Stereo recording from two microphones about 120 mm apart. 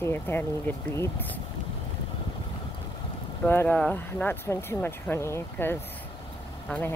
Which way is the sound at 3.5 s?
15° left (ahead or behind).